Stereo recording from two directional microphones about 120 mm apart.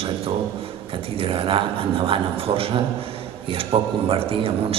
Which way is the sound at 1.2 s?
50° right (ahead or behind).